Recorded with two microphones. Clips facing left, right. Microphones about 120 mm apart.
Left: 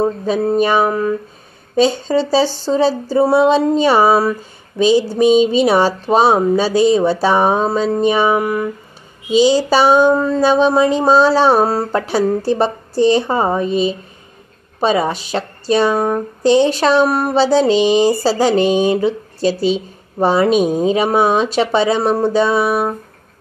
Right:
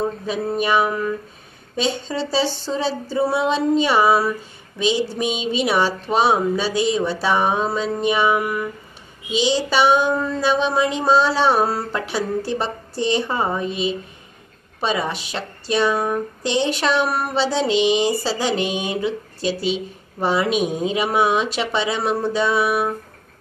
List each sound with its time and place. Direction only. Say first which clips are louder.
0.0 s speech: left 7 dB; 35° left (ahead or behind)